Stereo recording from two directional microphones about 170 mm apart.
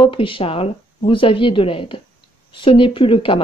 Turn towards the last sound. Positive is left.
turn(degrees=30)  # may be behind; listen again after turning